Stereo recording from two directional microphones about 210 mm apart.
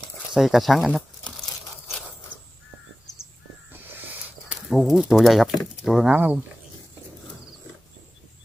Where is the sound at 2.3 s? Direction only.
60° left (ahead or behind).